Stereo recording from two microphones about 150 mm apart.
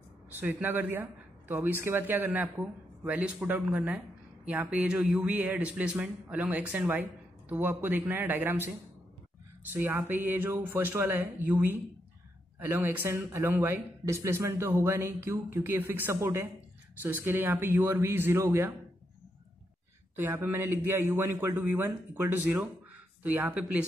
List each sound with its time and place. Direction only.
0.3 s a man's voice: 10° right (ahead or behind)
20.2 s a man's voice: 15° right (ahead or behind)